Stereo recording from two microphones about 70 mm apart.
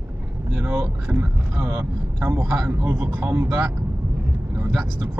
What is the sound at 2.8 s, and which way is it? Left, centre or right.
Speech, right.